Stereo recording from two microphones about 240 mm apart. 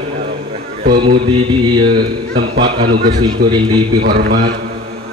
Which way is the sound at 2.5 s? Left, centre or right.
Right.